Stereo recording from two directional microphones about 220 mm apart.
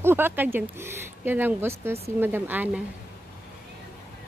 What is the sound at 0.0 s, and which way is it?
Speech, 10° right (ahead or behind).